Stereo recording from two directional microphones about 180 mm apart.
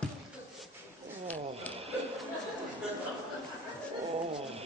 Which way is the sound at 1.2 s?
10° left (ahead or behind).